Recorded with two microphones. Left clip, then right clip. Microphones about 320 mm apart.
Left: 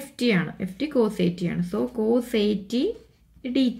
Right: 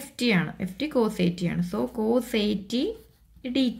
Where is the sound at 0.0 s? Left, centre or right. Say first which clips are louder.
Left 1 dB; centre.